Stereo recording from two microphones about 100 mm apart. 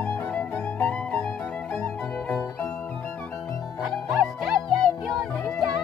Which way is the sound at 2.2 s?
30° left (ahead or behind).